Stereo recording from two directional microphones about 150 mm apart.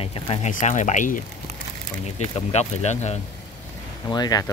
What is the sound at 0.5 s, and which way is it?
Speech, 55° left (ahead or behind).